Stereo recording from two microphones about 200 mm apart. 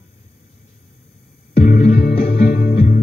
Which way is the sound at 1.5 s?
50° left (ahead or behind).